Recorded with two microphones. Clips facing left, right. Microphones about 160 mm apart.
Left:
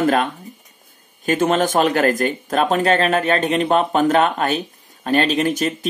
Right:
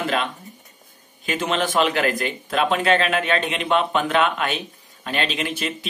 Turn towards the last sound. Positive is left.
turn(degrees=45)  # may be behind; listen again after turning